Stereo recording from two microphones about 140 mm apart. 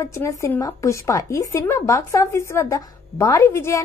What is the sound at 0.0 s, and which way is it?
A woman's voice, 20° left (ahead or behind).